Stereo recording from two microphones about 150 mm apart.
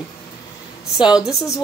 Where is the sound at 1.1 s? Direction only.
5° right (ahead or behind).